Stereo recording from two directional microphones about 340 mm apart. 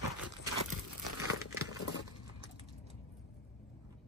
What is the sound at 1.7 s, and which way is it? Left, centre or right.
Keys jangling, left.